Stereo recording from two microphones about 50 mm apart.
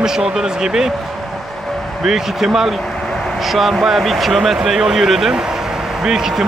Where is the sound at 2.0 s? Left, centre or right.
Centre.